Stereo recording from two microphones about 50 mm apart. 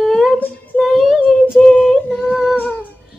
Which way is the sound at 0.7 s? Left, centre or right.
Centre.